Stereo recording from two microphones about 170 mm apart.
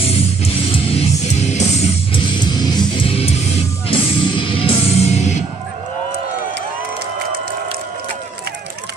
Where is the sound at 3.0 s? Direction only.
35° left (ahead or behind).